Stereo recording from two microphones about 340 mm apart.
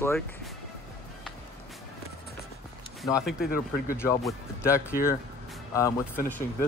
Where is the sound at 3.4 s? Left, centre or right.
Left.